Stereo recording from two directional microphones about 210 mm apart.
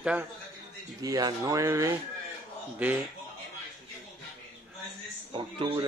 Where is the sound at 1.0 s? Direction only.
15° right (ahead or behind).